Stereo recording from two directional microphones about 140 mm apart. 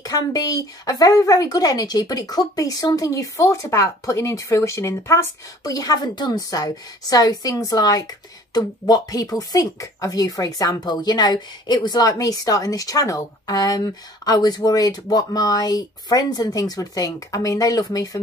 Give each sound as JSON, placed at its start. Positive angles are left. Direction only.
{"t": 0.0, "sound": "speech", "side_deg": 25}